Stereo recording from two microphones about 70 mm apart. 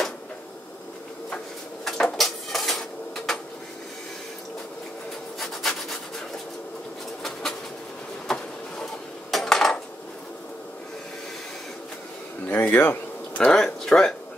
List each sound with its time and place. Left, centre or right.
1.9 s dishes: centre
5.4 s rub: centre
8.3 s a sound: centre
9.3 s dishes: centre
12.4 s a sound: left
13.4 s speech: centre